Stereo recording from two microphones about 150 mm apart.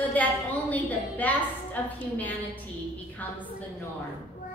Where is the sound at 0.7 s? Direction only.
10° left (ahead or behind).